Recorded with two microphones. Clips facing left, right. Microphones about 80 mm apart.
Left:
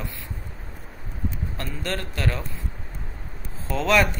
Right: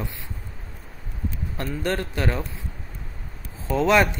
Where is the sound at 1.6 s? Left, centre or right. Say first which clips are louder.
Right 5 dB; right.